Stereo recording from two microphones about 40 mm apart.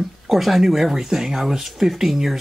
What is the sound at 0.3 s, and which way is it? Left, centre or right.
Speech, centre.